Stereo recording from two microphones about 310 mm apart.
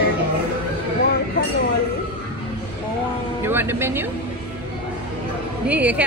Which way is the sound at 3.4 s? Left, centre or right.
Centre.